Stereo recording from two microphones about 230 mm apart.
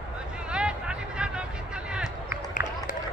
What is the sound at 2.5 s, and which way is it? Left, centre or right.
Run, left.